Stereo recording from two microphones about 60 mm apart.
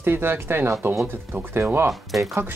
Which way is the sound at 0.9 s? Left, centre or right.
Centre.